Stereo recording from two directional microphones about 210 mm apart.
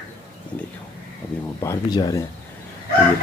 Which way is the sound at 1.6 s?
15° left (ahead or behind).